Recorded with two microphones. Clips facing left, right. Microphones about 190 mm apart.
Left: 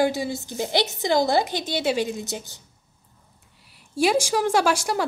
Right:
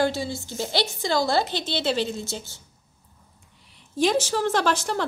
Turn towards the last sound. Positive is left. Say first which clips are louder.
# left 2 dB
turn(degrees=10)  # may be behind; listen again after turning